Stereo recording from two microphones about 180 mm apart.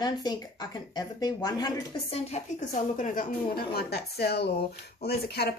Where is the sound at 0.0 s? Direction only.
20° left (ahead or behind).